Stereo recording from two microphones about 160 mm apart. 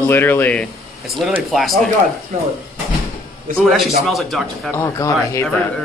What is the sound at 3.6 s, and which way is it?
Speech, centre (ahead or behind).